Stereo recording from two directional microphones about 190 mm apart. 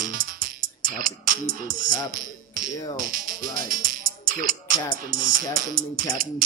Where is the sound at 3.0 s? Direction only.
45° right (ahead or behind).